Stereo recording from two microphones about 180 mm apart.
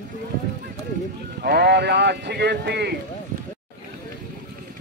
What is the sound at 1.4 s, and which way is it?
Speech, 65° right (ahead or behind).